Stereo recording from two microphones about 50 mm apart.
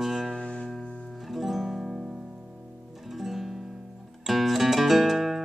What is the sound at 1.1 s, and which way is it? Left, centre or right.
Music, centre.